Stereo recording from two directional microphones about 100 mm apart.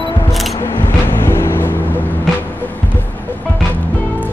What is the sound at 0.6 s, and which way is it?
Vehicle, 25° left (ahead or behind).